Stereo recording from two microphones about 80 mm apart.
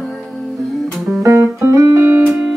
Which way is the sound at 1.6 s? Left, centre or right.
Right.